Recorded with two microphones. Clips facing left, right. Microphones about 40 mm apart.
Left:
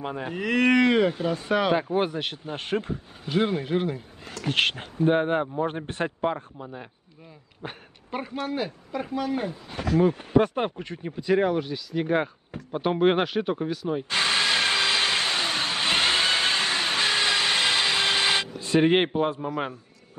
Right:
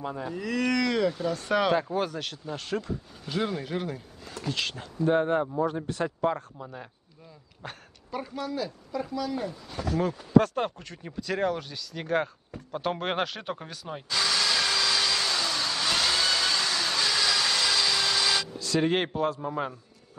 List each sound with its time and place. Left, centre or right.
0.0 s speech: left
1.4 s speech: centre
1.8 s speech: left
4.5 s speech: left
5.0 s speech: left
6.3 s speech: centre
8.1 s speech: left
10.4 s speech: left; by 14.0 s centre
14.0 s vehicle: left